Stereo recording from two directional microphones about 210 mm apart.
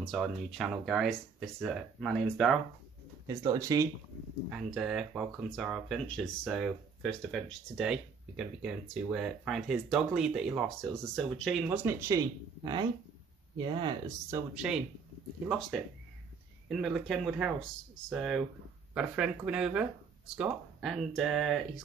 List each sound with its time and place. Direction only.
0.0 s speech: centre (ahead or behind)
3.3 s speech: 15° right (ahead or behind)
4.5 s speech: centre (ahead or behind); by 14.4 s 20° right (ahead or behind)
14.5 s speech: 5° right (ahead or behind)